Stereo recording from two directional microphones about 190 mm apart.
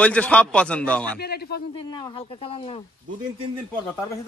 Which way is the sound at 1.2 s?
55° left (ahead or behind).